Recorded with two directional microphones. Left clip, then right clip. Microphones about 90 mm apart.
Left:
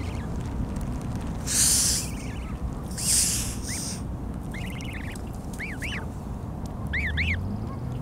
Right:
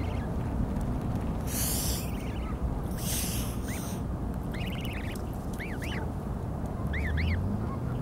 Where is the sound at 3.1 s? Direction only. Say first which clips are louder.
Left 10 dB; 15° left (ahead or behind).